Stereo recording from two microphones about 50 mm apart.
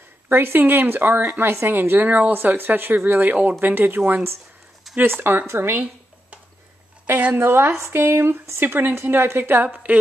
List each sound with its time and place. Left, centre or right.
0.3 s speech: right
4.1 s speech: right
7.1 s a woman's voice: right
7.3 s speech: right